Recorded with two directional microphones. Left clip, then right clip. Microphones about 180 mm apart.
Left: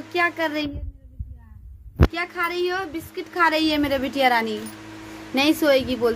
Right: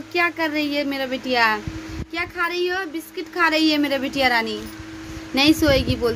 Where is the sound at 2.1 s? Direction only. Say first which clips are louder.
Right 7 dB; centre (ahead or behind).